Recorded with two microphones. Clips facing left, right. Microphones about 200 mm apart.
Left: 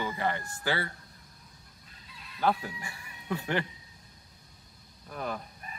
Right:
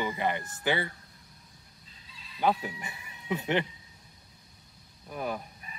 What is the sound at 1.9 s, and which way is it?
Goose, 60° left (ahead or behind).